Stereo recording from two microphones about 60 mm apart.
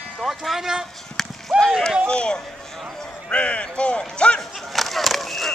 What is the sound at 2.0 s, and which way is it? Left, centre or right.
Speech, centre.